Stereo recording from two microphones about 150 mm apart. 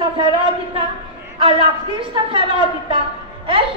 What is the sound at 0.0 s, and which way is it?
A woman's voice, 35° right (ahead or behind).